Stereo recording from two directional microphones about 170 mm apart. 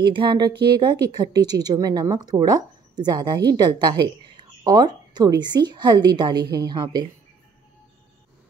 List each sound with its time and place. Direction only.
0.0 s a woman's voice: 30° right (ahead or behind)